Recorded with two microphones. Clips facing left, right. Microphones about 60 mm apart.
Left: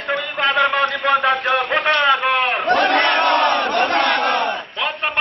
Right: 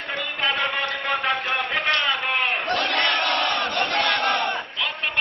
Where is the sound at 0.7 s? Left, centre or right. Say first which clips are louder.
Left 8 dB; left.